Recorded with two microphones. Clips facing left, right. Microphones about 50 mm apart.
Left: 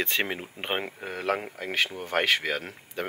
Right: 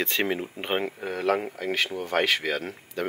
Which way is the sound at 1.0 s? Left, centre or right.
Centre.